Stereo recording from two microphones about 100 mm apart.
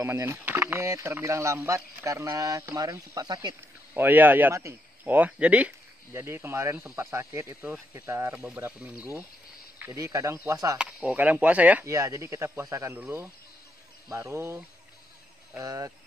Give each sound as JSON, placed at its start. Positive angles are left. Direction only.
{"t": 0.0, "sound": "speech", "side_deg": -25}
{"t": 3.9, "sound": "speech", "side_deg": -20}
{"t": 4.6, "sound": "speech", "side_deg": -30}
{"t": 5.1, "sound": "speech", "side_deg": -15}
{"t": 9.9, "sound": "speech", "side_deg": -35}
{"t": 10.8, "sound": "speech", "side_deg": -10}
{"t": 11.8, "sound": "speech", "side_deg": -30}